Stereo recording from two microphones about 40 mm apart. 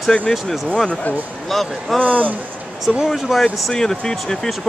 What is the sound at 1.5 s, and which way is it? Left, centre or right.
Speech, centre.